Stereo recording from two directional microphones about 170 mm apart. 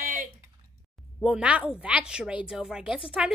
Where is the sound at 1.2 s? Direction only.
5° right (ahead or behind).